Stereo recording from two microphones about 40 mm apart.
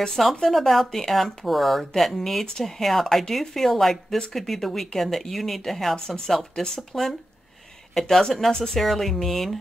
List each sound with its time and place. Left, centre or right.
0.5 s speech: centre
5.9 s speech: centre
8.8 s speech: centre